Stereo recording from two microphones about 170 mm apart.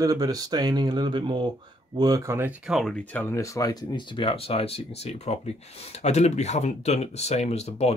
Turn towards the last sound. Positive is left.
turn(degrees=40)  # may be behind; listen again after turning